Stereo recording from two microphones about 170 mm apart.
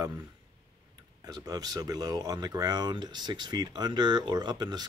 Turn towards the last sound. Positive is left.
turn(degrees=-25)  # may be behind; listen again after turning